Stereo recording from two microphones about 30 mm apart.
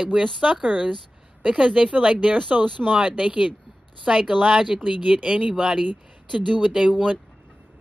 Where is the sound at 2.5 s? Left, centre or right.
Right.